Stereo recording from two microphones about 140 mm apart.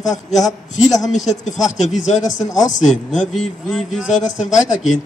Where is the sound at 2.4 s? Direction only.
25° left (ahead or behind).